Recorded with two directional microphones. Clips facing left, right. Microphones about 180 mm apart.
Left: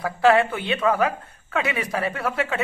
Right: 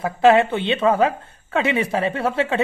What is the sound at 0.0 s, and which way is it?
Speech, 20° right (ahead or behind).